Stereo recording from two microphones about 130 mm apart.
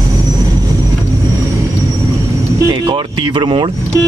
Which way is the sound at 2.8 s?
40° right (ahead or behind).